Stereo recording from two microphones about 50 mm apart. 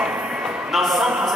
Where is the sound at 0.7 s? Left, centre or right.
Centre.